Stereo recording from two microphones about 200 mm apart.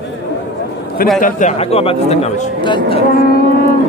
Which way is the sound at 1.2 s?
35° left (ahead or behind).